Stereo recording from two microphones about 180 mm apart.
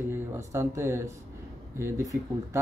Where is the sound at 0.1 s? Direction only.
15° right (ahead or behind).